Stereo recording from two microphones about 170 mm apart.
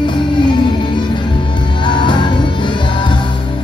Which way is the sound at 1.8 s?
30° left (ahead or behind).